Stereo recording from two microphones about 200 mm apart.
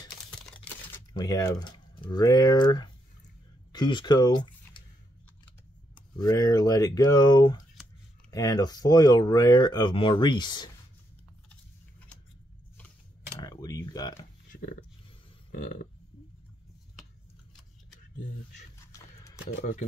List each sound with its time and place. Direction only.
1.1 s speech: 20° left (ahead or behind)
6.1 s speech: 20° left (ahead or behind)
13.4 s speech: 20° left (ahead or behind)
14.5 s a sound: 45° left (ahead or behind)
15.5 s burping: 45° left (ahead or behind)